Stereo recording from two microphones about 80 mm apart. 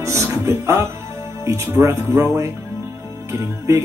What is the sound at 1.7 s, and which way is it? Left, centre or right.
Speech, right.